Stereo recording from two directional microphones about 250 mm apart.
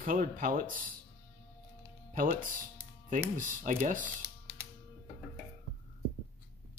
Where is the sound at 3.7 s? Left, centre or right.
Right.